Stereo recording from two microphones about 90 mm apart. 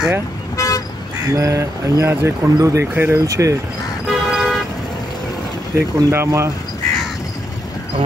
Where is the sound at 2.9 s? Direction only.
25° right (ahead or behind).